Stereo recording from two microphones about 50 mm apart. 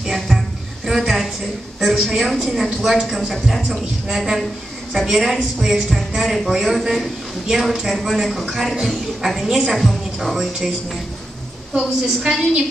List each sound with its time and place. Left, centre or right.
0.0 s music: centre
1.8 s a woman's voice: centre
4.9 s a woman's voice: centre
8.7 s a woman's voice: centre
11.7 s a woman's voice: centre